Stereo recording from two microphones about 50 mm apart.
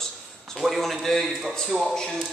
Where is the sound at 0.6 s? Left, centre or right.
Centre.